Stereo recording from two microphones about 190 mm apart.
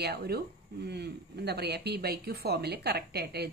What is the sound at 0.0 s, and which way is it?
A woman's voice, 60° right (ahead or behind).